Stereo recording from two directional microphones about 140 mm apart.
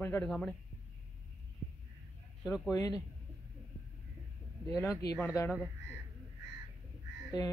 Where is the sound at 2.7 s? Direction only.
25° left (ahead or behind).